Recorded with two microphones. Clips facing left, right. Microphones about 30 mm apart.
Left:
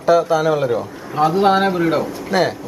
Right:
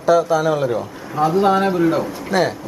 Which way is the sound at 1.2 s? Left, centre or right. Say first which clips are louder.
Left 1 dB; left.